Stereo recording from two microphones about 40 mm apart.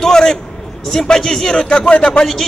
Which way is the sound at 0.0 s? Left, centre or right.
Centre.